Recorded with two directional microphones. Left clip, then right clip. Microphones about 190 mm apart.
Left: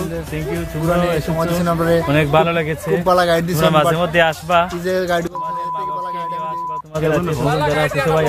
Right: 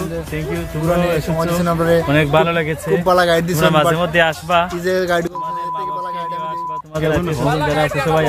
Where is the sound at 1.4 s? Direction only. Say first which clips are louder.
Left 1 dB; 15° right (ahead or behind).